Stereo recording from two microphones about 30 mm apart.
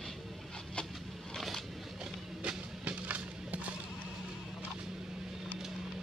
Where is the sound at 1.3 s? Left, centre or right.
Centre.